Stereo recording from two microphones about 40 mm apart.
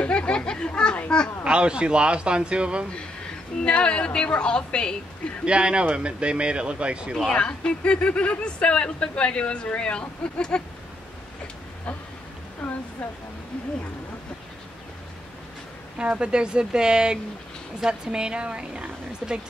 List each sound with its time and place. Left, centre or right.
0.0 s a sound: left
1.4 s a woman's voice: right
3.6 s speech: left
5.4 s a woman's voice: right
7.3 s speech: left
12.6 s waterfall: left
16.0 s a woman's voice: right